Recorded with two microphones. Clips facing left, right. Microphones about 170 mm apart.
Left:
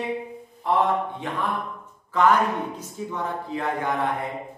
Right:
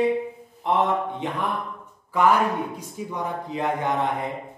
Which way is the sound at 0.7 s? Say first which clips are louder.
Even; 20° right (ahead or behind).